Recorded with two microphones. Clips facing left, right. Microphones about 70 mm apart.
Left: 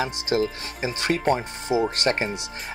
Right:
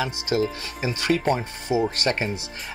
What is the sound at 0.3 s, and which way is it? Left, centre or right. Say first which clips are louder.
Speech: even; left.